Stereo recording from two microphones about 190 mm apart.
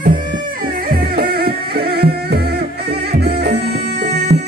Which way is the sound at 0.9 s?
55° right (ahead or behind).